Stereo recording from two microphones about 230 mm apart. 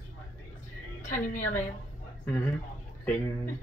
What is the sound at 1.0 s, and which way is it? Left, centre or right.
Speech, left.